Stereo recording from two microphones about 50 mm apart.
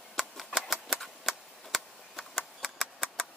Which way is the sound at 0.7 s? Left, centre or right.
Centre.